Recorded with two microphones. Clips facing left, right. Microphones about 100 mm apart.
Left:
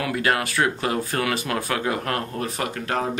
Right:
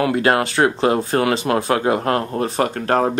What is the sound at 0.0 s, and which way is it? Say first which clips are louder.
Speech: right 6 dB; 35° right (ahead or behind).